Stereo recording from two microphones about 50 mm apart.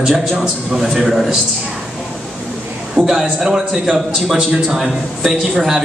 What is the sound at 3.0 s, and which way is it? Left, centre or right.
A man's voice, centre.